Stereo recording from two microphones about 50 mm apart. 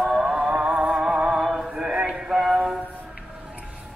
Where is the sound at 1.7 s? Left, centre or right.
Centre.